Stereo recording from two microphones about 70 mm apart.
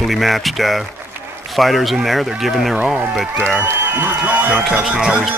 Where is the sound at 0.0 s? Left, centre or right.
Centre.